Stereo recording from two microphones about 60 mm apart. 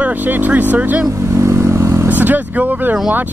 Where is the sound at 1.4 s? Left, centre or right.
Right.